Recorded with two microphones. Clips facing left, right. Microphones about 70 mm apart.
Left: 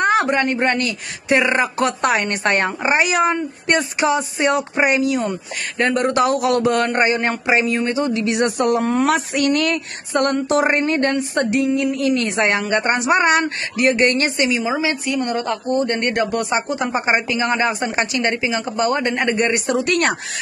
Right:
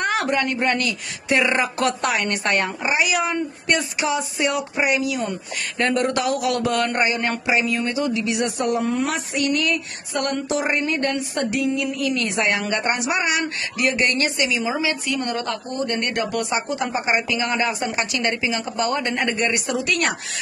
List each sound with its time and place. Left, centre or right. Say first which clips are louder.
0.0 s speech: left 5 dB; left
5.8 s speech: left 4 dB; left
9.0 s speech: left 6 dB; left
10.1 s a woman's voice: left 6 dB; left
19.7 s speech: left 4 dB; left